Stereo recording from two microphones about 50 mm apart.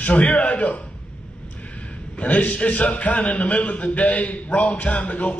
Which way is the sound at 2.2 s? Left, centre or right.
Left.